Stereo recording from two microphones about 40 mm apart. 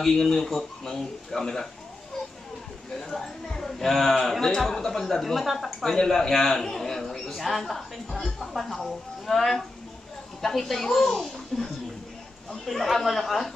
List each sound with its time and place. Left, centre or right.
0.1 s speech: centre
0.4 s a man's voice: centre
3.0 s a man's voice: centre
5.9 s a man's voice: centre